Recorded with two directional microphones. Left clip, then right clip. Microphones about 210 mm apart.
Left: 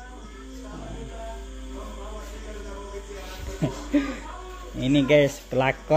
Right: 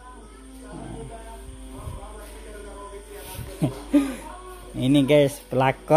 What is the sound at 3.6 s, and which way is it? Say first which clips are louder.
Speech: right 3 dB; 25° right (ahead or behind).